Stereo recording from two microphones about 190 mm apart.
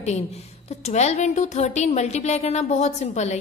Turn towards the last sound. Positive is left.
turn(degrees=35)  # may be behind; listen again after turning